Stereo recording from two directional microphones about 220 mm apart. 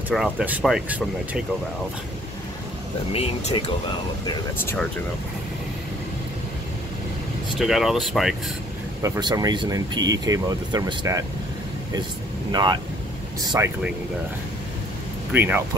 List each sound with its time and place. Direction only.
0.1 s speech: 5° right (ahead or behind)
3.1 s speech: 25° left (ahead or behind)
7.5 s speech: centre (ahead or behind)
9.0 s speech: 15° right (ahead or behind)
12.4 s speech: 20° right (ahead or behind)
15.3 s speech: 10° right (ahead or behind)